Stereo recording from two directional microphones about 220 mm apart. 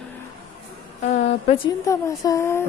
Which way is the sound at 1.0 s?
30° left (ahead or behind).